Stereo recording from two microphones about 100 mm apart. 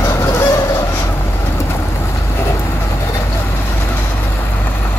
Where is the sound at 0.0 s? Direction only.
25° left (ahead or behind).